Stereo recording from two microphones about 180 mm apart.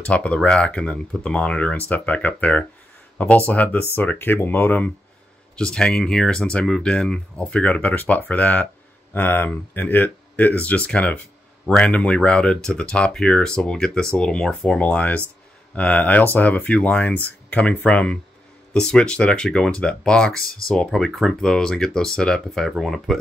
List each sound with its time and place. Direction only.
0.0 s speech: 5° left (ahead or behind)